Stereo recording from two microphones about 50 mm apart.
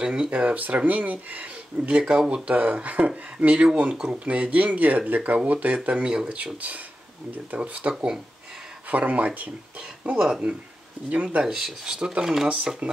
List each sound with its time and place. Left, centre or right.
0.0 s speech: centre
0.3 s speech: right
7.9 s speech: centre
8.8 s speech: right
11.4 s speech: centre
12.8 s speech: right